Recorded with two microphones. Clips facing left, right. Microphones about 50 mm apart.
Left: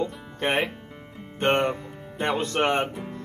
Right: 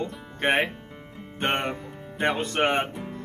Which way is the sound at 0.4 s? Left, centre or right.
Right.